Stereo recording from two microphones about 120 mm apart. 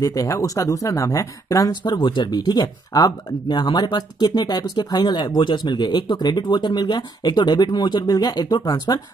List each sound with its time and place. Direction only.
0.0 s speech: 30° left (ahead or behind)